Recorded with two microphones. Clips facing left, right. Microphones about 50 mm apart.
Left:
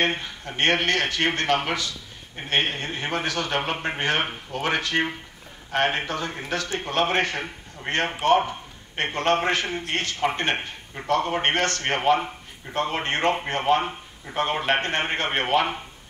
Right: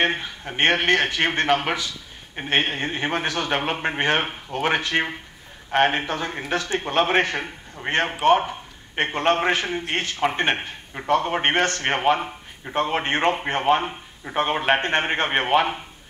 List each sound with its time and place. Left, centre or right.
0.0 s a man's voice: centre